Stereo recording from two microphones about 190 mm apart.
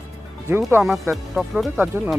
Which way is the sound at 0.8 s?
Centre (ahead or behind).